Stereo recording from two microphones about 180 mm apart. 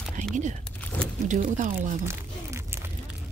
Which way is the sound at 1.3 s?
45° right (ahead or behind).